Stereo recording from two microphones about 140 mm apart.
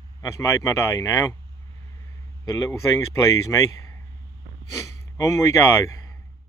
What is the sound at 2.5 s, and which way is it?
Speech, 20° left (ahead or behind).